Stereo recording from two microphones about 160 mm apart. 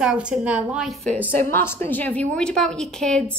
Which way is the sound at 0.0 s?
5° right (ahead or behind).